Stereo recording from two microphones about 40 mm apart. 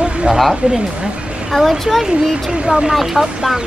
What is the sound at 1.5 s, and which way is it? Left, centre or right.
Speech, centre.